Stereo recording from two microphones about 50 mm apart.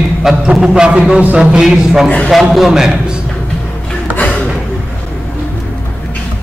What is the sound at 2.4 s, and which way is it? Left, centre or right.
Speech, centre.